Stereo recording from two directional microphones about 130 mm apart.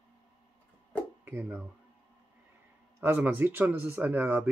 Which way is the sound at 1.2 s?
15° right (ahead or behind).